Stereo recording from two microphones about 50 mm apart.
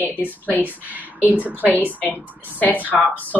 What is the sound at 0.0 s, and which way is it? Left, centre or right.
Speech, right.